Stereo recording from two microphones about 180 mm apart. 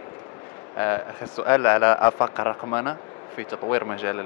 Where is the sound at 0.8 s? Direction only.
15° left (ahead or behind).